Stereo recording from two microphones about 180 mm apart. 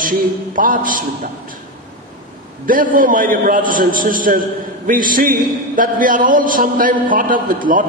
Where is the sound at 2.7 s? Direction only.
50° right (ahead or behind).